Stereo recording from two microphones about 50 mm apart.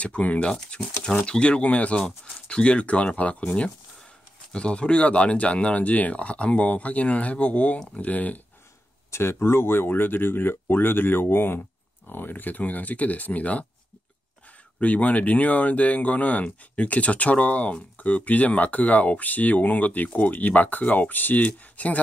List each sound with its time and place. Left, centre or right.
0.0 s speech: left
9.1 s speech: left
14.8 s speech: left